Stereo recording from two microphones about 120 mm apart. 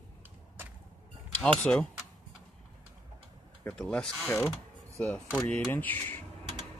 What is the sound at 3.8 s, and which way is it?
Speech, 5° left (ahead or behind).